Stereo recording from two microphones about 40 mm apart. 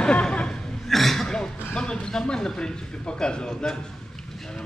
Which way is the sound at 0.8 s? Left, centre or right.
Centre.